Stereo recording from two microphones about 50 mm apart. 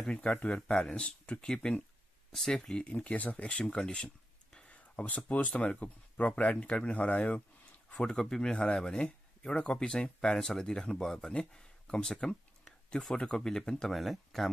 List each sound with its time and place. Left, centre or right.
0.3 s speech: left
3.8 s a sound: centre
4.6 s a sound: left
5.6 s speech: left
7.9 s speech: centre
13.9 s speech: centre